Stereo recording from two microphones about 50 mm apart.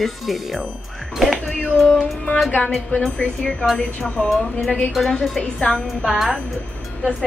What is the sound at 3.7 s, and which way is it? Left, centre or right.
A woman's voice, left.